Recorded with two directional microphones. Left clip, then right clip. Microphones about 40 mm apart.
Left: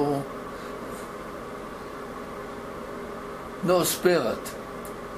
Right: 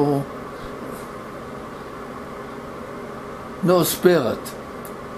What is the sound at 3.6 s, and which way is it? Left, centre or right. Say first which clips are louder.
Speech: right 5 dB; right.